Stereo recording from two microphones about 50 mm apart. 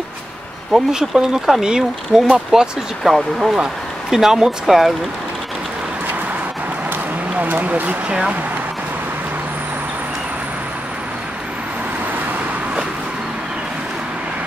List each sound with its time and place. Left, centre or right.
0.7 s speech: centre
3.0 s speech: centre
7.3 s speech: right